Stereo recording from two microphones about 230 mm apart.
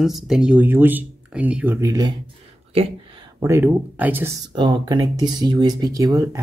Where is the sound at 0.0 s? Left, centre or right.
Centre.